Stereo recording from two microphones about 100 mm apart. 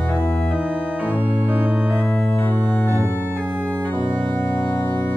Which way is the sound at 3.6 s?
10° left (ahead or behind).